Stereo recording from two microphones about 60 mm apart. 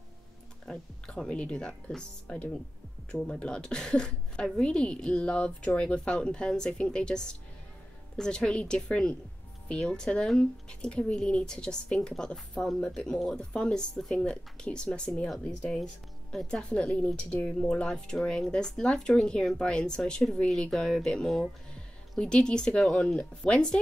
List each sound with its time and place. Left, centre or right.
0.7 s a woman's voice: centre
16.6 s a woman's voice: left